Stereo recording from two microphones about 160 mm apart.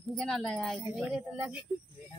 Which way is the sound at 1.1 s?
10° right (ahead or behind).